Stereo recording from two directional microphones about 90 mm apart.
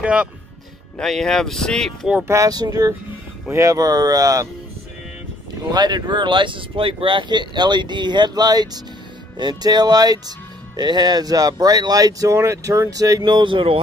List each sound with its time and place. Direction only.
0.0 s speech: 10° right (ahead or behind)
0.9 s speech: 5° left (ahead or behind)
2.2 s speech: 35° right (ahead or behind)
2.5 s speech: 45° right (ahead or behind)
3.4 s speech: 35° right (ahead or behind)
5.7 s speech: 50° right (ahead or behind)
13.2 s speech: 60° right (ahead or behind)